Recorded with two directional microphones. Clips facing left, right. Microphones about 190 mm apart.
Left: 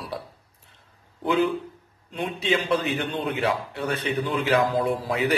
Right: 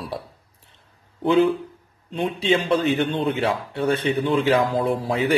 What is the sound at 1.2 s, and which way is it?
A man's voice, 25° right (ahead or behind).